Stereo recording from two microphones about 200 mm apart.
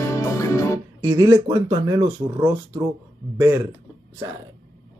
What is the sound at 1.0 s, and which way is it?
Speech, 15° right (ahead or behind).